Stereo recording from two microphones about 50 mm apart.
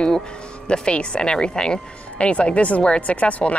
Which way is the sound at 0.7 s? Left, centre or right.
Centre.